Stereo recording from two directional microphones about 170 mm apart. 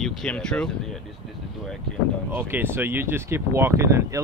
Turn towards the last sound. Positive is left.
turn(degrees=-15)  # may be behind; listen again after turning